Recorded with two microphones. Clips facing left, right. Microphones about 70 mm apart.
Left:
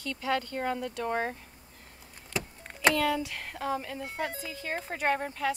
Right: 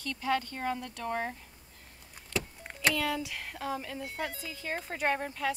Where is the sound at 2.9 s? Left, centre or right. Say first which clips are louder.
Left 4 dB; centre.